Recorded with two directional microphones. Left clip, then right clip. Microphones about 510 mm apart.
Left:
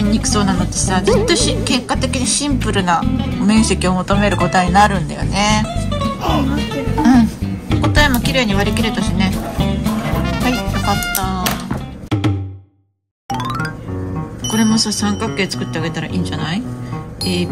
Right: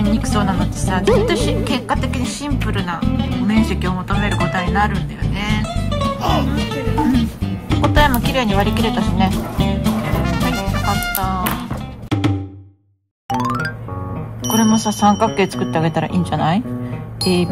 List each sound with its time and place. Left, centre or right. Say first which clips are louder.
0.0 s speech: left 2 dB; centre
7.7 s music: even; centre
13.3 s music: right 2 dB; centre
14.5 s speech: even; centre